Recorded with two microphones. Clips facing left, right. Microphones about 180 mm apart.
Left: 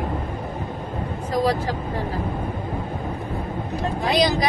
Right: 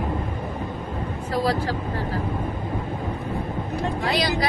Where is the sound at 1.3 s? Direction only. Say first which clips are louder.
Left 2 dB; 15° left (ahead or behind).